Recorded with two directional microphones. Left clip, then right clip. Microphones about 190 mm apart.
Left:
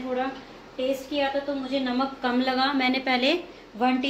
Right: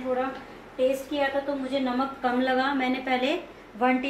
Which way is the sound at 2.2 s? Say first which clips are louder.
Even; 50° left (ahead or behind).